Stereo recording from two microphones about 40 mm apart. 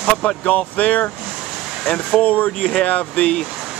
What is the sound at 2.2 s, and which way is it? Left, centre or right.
Speech, left.